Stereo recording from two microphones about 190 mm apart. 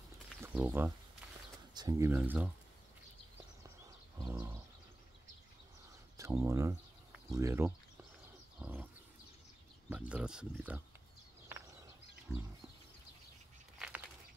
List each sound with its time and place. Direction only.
0.4 s speech: 10° right (ahead or behind)
1.7 s speech: 20° right (ahead or behind)
4.2 s bird: 15° right (ahead or behind)
6.1 s speech: 15° right (ahead or behind)
7.2 s a sound: 15° right (ahead or behind)
9.8 s speech: 5° right (ahead or behind)
13.7 s a sound: 5° right (ahead or behind)